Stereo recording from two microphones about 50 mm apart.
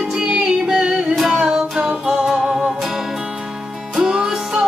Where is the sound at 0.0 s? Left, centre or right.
Centre.